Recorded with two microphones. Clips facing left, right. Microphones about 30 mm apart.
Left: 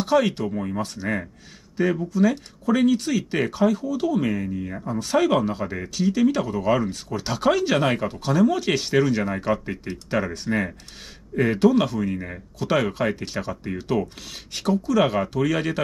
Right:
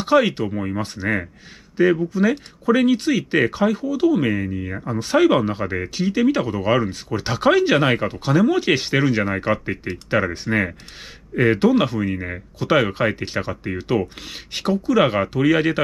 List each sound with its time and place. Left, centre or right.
0.0 s speech: right